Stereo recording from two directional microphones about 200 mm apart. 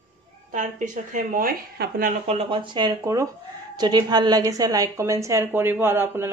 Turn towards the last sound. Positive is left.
turn(degrees=-10)  # may be behind; listen again after turning